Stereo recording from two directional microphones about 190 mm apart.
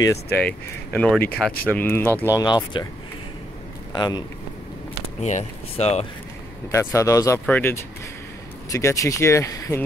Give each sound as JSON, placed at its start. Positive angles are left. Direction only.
{"t": 0.0, "sound": "speech", "side_deg": 15}
{"t": 0.4, "sound": "speech", "side_deg": 5}
{"t": 2.3, "sound": "speech", "side_deg": 20}
{"t": 3.9, "sound": "speech", "side_deg": 20}
{"t": 5.2, "sound": "speech", "side_deg": 35}
{"t": 6.7, "sound": "speech", "side_deg": 15}